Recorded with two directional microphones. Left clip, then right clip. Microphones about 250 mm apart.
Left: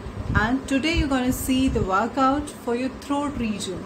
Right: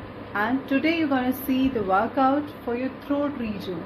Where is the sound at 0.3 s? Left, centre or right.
Centre.